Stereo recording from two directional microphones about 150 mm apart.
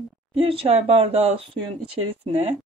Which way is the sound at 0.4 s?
40° right (ahead or behind).